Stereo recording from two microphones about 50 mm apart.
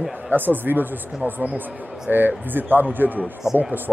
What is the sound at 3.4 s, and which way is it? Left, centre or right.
Speech, left.